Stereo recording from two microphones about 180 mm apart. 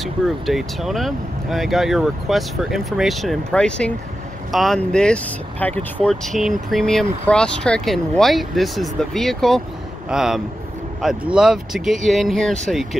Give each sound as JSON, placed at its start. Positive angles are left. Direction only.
{"t": 0.0, "sound": "speech", "side_deg": 0}